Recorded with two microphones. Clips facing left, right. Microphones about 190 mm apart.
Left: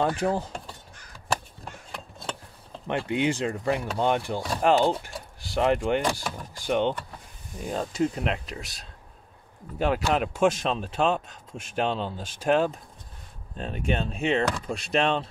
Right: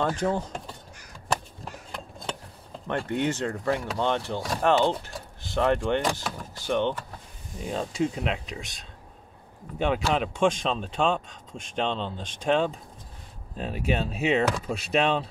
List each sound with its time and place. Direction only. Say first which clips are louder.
0.0 s speech: left 1 dB; 5° left (ahead or behind)
1.6 s a sound: right 2 dB; centre (ahead or behind)
2.9 s speech: left 1 dB; 10° left (ahead or behind)
7.6 s speech: left 1 dB; centre (ahead or behind)